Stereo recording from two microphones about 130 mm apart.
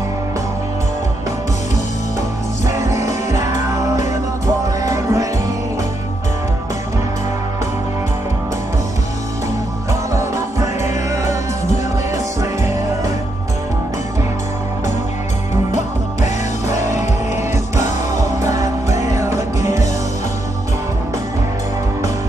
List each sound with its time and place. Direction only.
2.6 s music: 25° right (ahead or behind)
10.1 s music: 25° right (ahead or behind)
16.7 s music: 25° right (ahead or behind)